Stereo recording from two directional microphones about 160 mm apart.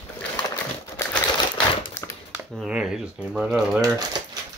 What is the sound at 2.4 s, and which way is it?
Speech, centre (ahead or behind).